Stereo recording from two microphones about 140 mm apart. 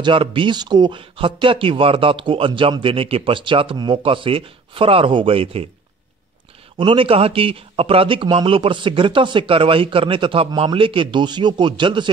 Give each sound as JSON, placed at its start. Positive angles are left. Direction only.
{"t": 0.0, "sound": "speech", "side_deg": -35}
{"t": 6.8, "sound": "speech", "side_deg": -40}